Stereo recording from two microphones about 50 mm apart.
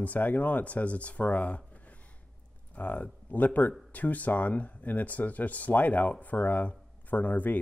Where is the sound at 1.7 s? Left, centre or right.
Left.